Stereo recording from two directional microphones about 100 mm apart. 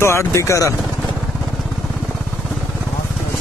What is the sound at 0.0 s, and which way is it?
Speech, 25° left (ahead or behind).